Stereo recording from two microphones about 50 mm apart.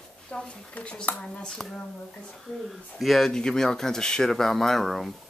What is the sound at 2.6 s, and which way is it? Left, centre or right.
Speech, centre.